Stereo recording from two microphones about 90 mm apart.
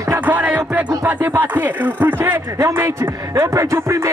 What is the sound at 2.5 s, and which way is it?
A man's voice, 35° right (ahead or behind).